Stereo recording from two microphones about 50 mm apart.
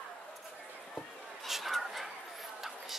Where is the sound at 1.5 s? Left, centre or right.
Centre.